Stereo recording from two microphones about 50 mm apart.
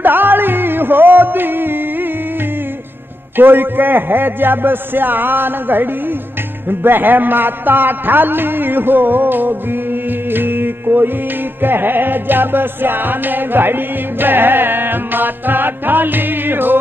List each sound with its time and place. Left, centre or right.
0.0 s music: right
3.3 s music: right